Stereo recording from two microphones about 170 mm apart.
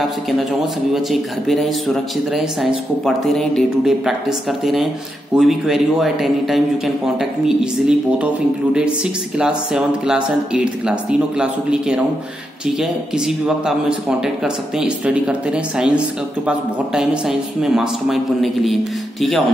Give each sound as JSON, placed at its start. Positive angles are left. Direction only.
{"t": 0.3, "sound": "speech", "side_deg": 0}